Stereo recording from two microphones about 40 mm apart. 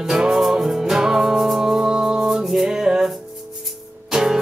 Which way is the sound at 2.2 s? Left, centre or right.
Centre.